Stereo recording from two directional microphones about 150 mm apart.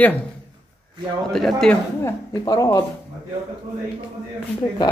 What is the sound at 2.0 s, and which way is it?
Speech, 25° left (ahead or behind).